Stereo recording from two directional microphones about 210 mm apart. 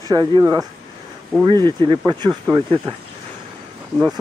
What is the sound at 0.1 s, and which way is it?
Speech, 20° right (ahead or behind).